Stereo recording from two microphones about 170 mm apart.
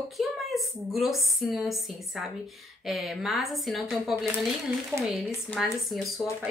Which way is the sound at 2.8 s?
Centre (ahead or behind).